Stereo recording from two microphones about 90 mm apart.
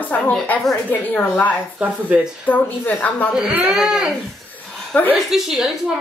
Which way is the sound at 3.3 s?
10° right (ahead or behind).